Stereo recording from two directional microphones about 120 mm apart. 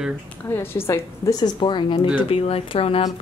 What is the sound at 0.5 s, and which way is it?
Speech, 20° left (ahead or behind).